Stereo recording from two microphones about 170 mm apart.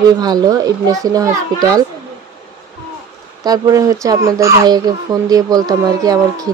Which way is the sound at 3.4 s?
20° right (ahead or behind).